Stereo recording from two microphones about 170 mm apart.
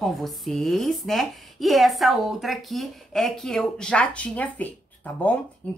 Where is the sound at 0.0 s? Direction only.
Centre (ahead or behind).